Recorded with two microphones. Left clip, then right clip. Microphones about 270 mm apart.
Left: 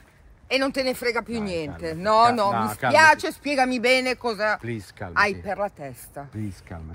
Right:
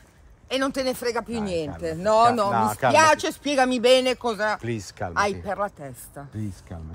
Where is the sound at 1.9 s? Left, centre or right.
Centre.